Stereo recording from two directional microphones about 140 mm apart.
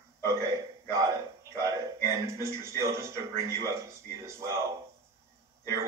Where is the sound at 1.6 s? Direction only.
20° right (ahead or behind).